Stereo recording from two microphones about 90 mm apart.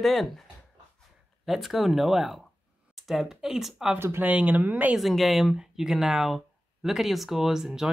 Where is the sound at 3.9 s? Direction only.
25° right (ahead or behind).